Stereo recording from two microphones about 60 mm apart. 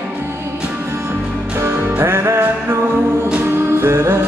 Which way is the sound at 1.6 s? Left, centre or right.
Right.